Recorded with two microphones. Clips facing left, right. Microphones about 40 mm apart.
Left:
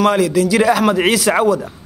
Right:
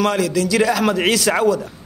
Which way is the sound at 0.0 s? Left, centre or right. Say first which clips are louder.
Left 4 dB; centre.